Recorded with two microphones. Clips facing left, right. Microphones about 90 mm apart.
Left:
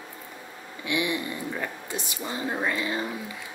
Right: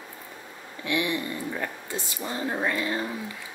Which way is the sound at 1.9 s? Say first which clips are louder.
Right 1 dB; 20° left (ahead or behind).